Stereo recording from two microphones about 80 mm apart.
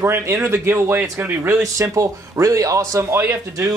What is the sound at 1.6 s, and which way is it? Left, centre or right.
Speech, right.